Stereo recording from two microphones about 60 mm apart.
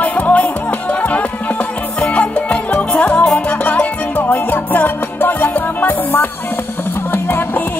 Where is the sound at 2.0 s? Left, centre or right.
Centre.